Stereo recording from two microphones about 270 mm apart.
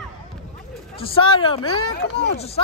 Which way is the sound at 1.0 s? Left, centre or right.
Centre.